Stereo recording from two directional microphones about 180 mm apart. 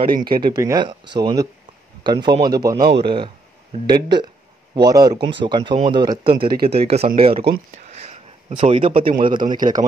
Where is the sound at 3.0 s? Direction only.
30° right (ahead or behind).